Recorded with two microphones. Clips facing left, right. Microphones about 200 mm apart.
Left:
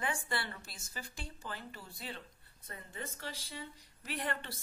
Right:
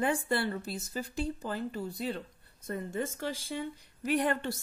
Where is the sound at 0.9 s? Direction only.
35° right (ahead or behind).